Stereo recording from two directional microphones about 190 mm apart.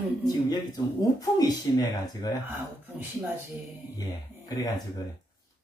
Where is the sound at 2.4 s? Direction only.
10° right (ahead or behind).